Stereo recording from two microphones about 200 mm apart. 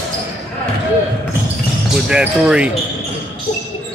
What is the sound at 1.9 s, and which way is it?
Speech, 5° right (ahead or behind).